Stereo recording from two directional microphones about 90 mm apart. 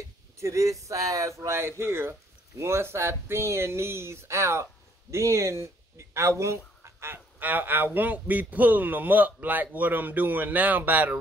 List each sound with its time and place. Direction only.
0.4 s speech: 35° right (ahead or behind)